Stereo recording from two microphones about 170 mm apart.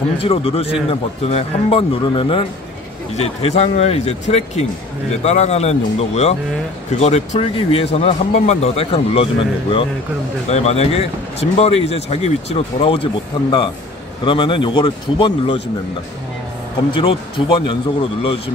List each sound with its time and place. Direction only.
0.2 s speech: 35° left (ahead or behind)
16.9 s speech: 30° left (ahead or behind)